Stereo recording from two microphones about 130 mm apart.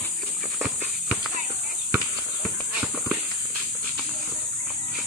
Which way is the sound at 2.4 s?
5° right (ahead or behind).